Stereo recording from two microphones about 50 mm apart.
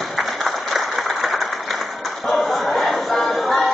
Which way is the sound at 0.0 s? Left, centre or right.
Centre.